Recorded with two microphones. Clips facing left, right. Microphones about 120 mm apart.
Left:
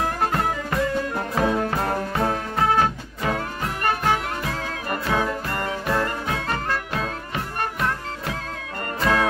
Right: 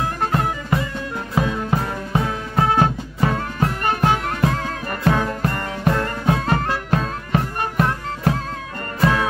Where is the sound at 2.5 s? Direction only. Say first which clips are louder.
Right 5 dB; 20° right (ahead or behind).